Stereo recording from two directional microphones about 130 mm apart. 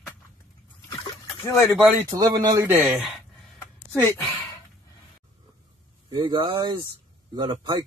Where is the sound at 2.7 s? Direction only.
15° right (ahead or behind).